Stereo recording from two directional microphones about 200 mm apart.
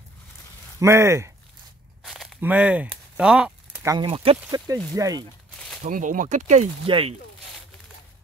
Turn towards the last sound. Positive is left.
turn(degrees=-30)  # may be behind; listen again after turning